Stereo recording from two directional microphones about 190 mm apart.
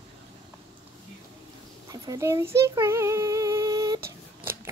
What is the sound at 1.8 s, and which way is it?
Female singing, 20° right (ahead or behind).